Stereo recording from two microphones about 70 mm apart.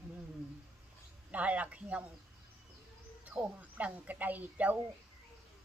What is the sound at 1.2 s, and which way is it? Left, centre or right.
Speech, centre.